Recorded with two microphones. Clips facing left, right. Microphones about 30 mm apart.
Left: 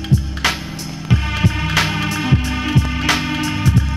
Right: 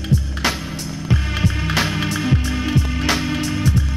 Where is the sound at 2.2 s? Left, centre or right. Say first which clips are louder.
Left 2 dB; centre.